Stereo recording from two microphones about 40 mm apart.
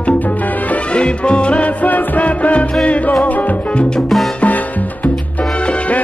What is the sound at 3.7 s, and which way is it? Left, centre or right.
Music, left.